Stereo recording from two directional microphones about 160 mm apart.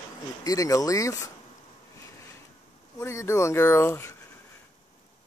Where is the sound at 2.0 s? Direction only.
20° left (ahead or behind).